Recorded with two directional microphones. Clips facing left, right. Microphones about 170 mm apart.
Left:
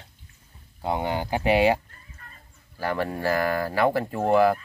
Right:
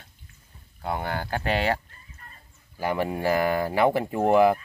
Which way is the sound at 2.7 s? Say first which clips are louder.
Right 1 dB; 15° right (ahead or behind).